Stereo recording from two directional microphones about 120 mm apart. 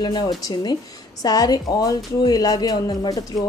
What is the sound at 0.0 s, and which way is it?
A woman's voice, 35° left (ahead or behind).